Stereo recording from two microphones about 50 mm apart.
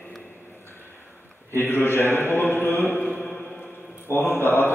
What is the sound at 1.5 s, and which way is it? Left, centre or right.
A man's voice, left.